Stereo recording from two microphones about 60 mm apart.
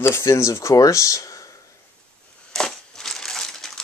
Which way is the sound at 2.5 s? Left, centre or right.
Centre.